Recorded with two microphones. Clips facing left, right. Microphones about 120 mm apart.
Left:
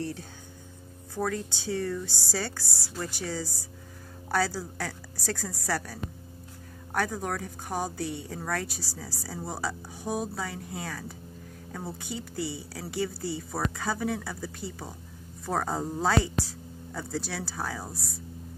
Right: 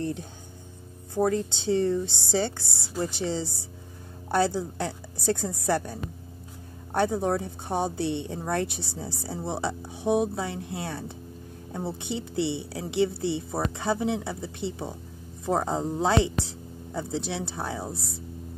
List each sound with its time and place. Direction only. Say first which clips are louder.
0.0 s a woman's voice: right 4 dB; 20° right (ahead or behind)